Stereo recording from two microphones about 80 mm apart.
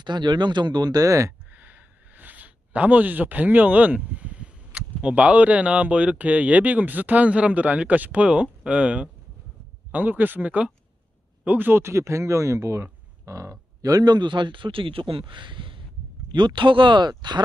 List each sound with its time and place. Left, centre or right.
0.0 s speech: right
1.5 s speech: right
16.3 s speech: right